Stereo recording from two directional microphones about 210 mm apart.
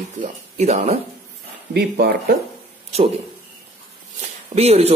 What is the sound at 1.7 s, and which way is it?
Speech, 50° right (ahead or behind).